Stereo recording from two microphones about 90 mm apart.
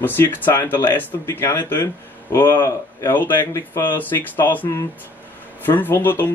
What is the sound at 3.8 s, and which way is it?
Speech, 20° left (ahead or behind).